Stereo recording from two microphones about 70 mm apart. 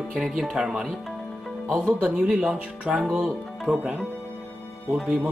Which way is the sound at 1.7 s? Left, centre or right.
Centre.